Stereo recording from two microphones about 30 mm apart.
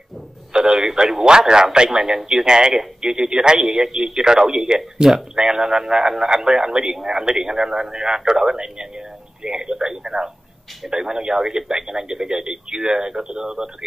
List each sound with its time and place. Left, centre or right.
0.5 s a sound: right
1.0 s speech: right
1.9 s speech: centre
3.5 s a man's voice: centre